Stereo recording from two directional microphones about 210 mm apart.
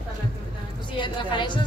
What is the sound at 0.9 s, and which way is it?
Music, 20° left (ahead or behind).